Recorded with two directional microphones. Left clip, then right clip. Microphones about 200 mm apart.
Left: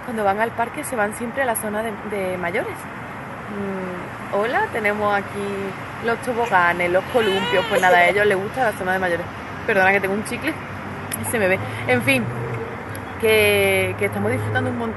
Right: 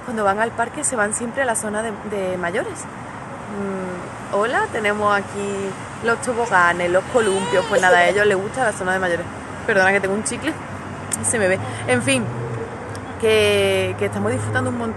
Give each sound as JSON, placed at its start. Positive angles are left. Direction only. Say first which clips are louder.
{"t": 0.2, "sound": "speech", "louder": "right 1 dB", "side_deg": -10}
{"t": 4.4, "sound": "speech", "louder": "right 1 dB", "side_deg": -10}
{"t": 7.2, "sound": "speech", "louder": "even", "side_deg": -30}
{"t": 7.8, "sound": "a woman's voice", "louder": "even", "side_deg": -10}
{"t": 13.2, "sound": "a woman's voice", "louder": "even", "side_deg": -5}